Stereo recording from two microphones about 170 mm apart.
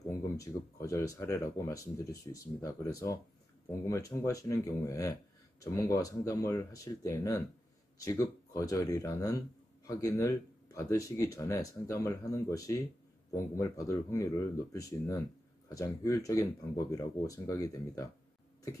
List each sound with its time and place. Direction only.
0.4 s speech: 20° left (ahead or behind)